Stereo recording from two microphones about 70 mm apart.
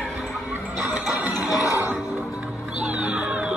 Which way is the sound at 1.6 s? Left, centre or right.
Left.